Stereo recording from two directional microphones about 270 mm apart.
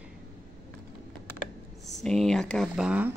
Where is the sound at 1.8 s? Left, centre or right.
Centre.